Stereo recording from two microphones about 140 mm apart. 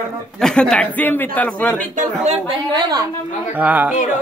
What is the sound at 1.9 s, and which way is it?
Speech, 65° right (ahead or behind).